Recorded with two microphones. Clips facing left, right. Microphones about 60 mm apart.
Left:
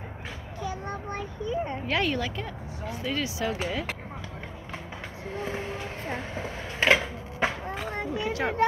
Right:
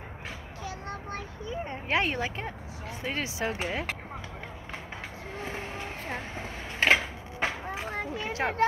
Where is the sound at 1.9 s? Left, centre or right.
Right.